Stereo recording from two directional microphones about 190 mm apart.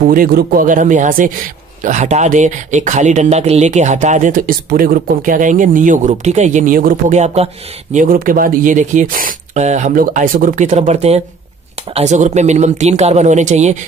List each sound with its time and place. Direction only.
0.0 s a man's voice: 45° right (ahead or behind)